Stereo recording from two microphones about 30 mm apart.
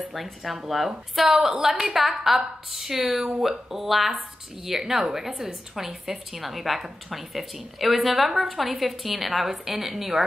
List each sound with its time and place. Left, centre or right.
0.1 s a woman's voice: centre
1.3 s a woman's voice: centre
3.2 s speech: right
3.4 s a woman's voice: centre